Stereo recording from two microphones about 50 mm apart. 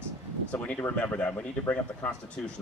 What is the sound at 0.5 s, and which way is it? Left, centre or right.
Speech, left.